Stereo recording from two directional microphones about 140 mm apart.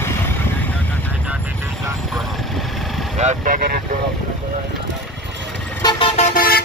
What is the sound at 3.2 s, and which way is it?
Vehicle, 60° right (ahead or behind).